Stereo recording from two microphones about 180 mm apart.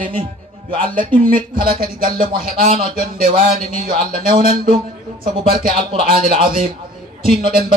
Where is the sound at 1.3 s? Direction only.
50° right (ahead or behind).